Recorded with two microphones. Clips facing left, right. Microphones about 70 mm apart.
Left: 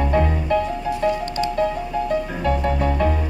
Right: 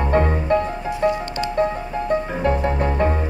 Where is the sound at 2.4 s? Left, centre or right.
Right.